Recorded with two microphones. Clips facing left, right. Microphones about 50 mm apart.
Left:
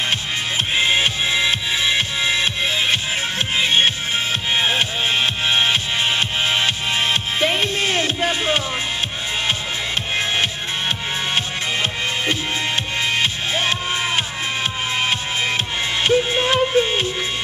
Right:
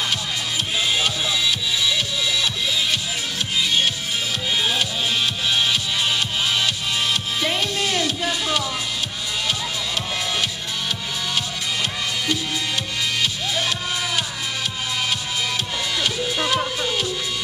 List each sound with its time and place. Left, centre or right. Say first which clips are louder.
0.7 s music: left 4 dB; left
10.1 s music: left 6 dB; left